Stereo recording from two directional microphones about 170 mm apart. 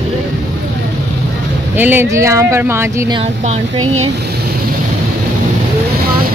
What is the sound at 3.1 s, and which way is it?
Speech, 30° right (ahead or behind).